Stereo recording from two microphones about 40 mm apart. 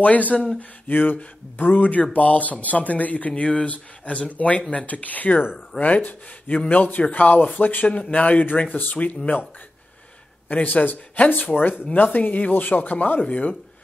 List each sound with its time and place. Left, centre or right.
0.0 s speech: left
0.6 s speech: left
10.5 s speech: left